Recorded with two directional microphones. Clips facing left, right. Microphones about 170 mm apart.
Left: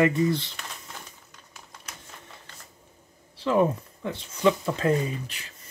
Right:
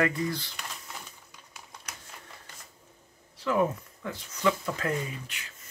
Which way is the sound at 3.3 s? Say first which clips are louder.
Left 4 dB; 30° left (ahead or behind).